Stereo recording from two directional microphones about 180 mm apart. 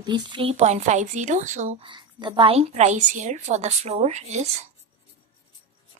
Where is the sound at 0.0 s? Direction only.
25° right (ahead or behind); by 1.8 s 40° right (ahead or behind).